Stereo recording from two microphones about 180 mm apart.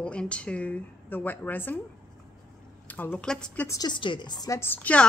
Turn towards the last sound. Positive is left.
turn(degrees=10)  # may be behind; listen again after turning